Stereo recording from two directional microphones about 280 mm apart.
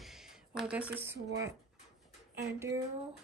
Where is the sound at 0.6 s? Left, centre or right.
Centre.